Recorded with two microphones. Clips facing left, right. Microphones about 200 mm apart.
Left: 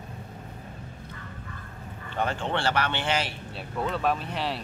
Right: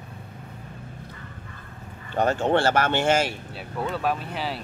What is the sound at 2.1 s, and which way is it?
Speech, 45° right (ahead or behind).